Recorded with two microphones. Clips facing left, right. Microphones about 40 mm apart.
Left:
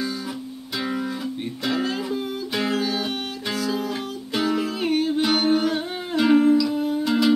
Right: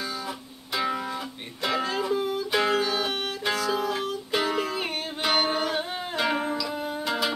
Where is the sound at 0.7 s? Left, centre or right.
Centre.